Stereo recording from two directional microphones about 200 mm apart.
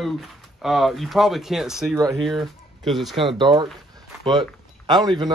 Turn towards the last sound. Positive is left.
turn(degrees=-20)  # may be behind; listen again after turning